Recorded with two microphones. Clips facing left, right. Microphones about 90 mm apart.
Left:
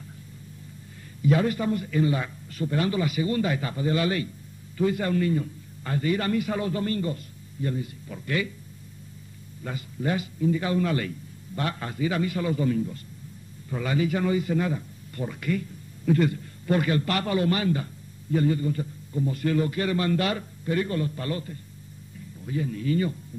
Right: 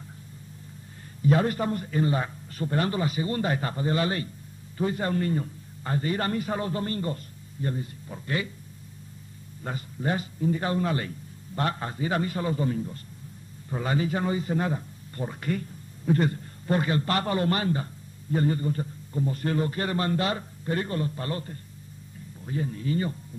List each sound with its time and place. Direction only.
1.2 s a man's voice: 40° right (ahead or behind)
9.6 s a man's voice: 35° right (ahead or behind)